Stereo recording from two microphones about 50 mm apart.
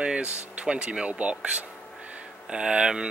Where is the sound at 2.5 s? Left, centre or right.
Centre.